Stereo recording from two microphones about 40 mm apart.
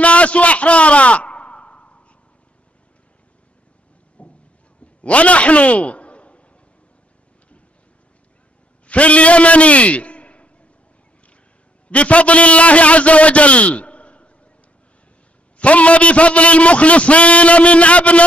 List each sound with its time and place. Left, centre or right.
0.0 s a sound: left
4.2 s boat: left
5.0 s a man's voice: left
8.8 s a sound: left
11.9 s a man's voice: left
15.5 s a man's voice: left